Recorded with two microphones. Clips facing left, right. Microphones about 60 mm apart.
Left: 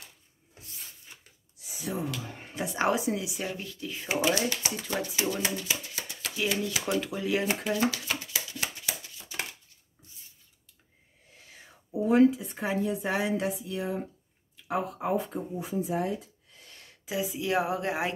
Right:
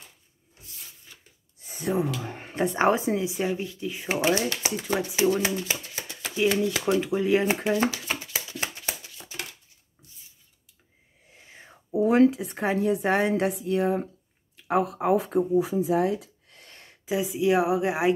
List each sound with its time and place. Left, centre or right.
1.6 s a sound: right
2.2 s speech: right
3.4 s speech: centre
4.6 s speech: right
8.5 s a sound: right
11.3 s whispering: right
11.9 s a woman's voice: right
16.5 s a sound: right
17.0 s speech: right